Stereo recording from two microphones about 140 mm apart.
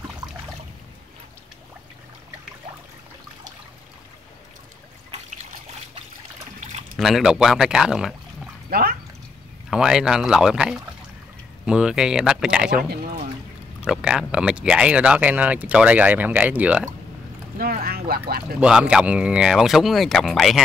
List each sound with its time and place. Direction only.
7.0 s speech: centre (ahead or behind)
8.6 s a sound: 90° right
9.7 s speech: 5° right (ahead or behind)
13.8 s speech: 5° right (ahead or behind)
17.6 s speech: 90° right
18.6 s speech: 5° right (ahead or behind)